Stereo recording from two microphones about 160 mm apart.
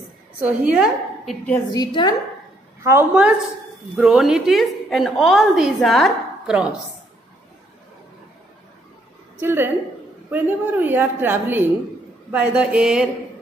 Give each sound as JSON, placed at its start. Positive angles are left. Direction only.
{"t": 0.4, "sound": "a woman's voice", "side_deg": -5}
{"t": 1.7, "sound": "a woman's voice", "side_deg": 30}
{"t": 2.8, "sound": "a woman's voice", "side_deg": -15}
{"t": 9.4, "sound": "a woman's voice", "side_deg": -15}